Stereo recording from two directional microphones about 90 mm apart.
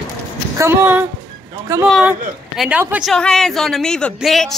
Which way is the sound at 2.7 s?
15° right (ahead or behind).